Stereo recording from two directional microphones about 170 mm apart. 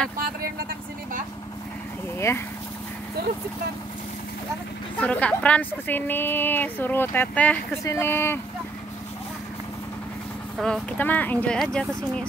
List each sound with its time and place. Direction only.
0.2 s vehicle: 60° right (ahead or behind)
2.1 s speech: 15° left (ahead or behind)
5.0 s a woman's voice: 10° left (ahead or behind)
10.6 s a woman's voice: 5° left (ahead or behind)